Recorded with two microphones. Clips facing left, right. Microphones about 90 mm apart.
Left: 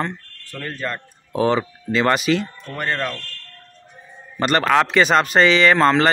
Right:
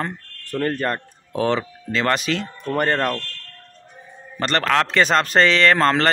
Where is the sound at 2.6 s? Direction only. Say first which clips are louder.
Right 4 dB; 50° right (ahead or behind).